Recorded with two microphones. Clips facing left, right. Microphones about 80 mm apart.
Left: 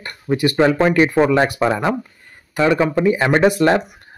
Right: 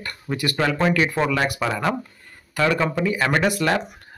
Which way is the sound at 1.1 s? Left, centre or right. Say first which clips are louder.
Left 7 dB; left.